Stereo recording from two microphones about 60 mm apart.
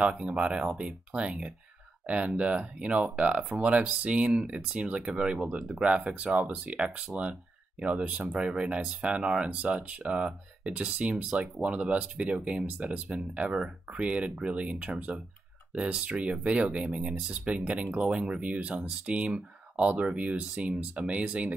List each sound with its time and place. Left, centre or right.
0.0 s speech: centre